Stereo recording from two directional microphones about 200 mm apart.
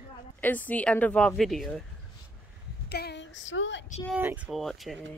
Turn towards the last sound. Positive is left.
turn(degrees=0)  # may be behind; listen again after turning